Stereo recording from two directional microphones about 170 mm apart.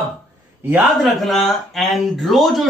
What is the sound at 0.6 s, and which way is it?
Speech, 5° right (ahead or behind).